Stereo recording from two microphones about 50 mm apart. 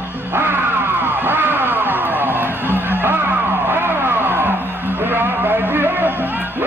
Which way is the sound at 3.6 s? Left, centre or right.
Right.